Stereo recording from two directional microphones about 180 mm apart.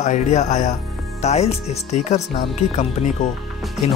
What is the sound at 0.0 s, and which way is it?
Speech, 40° left (ahead or behind).